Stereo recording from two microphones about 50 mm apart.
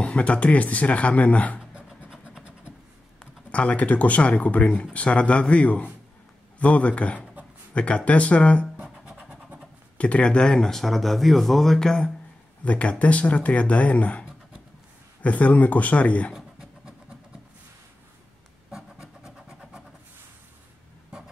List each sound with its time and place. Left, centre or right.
0.0 s speech: left
1.6 s scratch: centre
2.0 s vehicle: centre
3.5 s speech: left
8.7 s scratch: right
9.9 s speech: left
12.6 s speech: left
15.2 s speech: left
18.7 s scratch: centre